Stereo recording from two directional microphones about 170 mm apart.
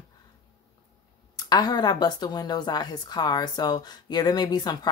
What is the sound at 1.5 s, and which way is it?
A woman's voice, 25° left (ahead or behind).